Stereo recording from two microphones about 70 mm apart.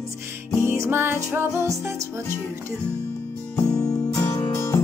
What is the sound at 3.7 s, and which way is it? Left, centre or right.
Music, left.